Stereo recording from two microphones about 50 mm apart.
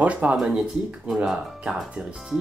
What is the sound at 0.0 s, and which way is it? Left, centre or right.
Speech, right.